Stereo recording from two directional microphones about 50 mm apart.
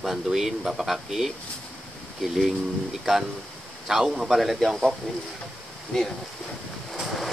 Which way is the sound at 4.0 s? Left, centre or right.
Centre.